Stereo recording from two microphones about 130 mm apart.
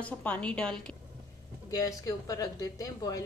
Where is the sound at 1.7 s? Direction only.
25° left (ahead or behind).